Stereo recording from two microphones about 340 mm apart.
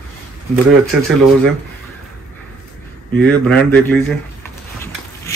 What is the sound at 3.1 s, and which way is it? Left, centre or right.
Speech, centre.